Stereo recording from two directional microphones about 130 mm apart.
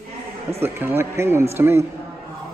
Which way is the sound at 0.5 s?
20° right (ahead or behind).